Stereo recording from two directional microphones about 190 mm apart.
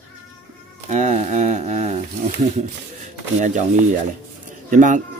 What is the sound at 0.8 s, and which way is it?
Speech, 40° right (ahead or behind).